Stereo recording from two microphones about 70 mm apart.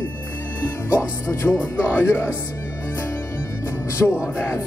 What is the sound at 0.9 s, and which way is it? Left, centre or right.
Speech, left.